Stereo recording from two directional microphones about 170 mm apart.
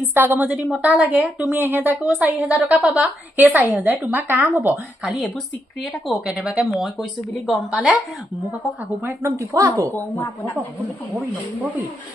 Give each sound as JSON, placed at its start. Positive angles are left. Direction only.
{"t": 0.0, "sound": "a woman's voice", "side_deg": -10}
{"t": 9.0, "sound": "a woman's voice", "side_deg": -15}
{"t": 9.9, "sound": "speech", "side_deg": 10}